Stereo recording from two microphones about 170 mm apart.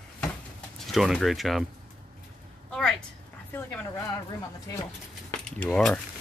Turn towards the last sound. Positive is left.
turn(degrees=5)  # may be behind; listen again after turning